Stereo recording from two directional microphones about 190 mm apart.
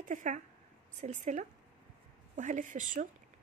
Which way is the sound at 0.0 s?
45° right (ahead or behind).